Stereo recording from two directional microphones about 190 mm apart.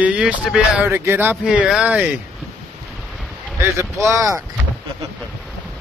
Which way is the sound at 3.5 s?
15° right (ahead or behind).